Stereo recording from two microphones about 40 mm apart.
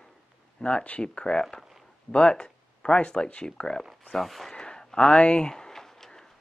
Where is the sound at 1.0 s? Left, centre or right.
Left.